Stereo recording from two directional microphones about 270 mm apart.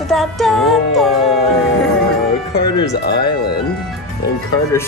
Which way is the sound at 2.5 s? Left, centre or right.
Left.